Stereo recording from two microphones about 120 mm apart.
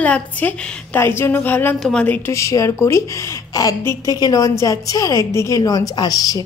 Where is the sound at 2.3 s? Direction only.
25° left (ahead or behind).